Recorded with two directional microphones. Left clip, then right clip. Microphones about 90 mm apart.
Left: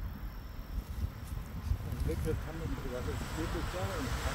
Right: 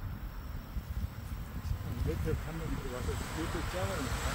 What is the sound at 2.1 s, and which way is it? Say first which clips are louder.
Speech: even; 35° right (ahead or behind).